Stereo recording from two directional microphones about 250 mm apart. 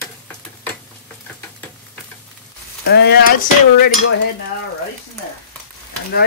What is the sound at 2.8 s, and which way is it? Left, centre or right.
Sizzle, left.